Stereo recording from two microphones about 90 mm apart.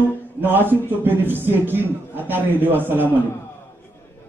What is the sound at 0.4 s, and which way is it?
A man's voice, 20° right (ahead or behind).